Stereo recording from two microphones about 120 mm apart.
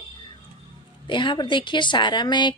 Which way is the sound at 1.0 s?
40° left (ahead or behind).